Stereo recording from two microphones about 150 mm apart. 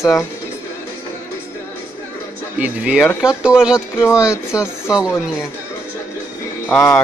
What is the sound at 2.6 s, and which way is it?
Speech, 5° right (ahead or behind).